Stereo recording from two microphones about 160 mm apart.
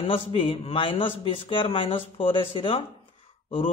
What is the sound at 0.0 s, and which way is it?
A man's voice, 35° left (ahead or behind).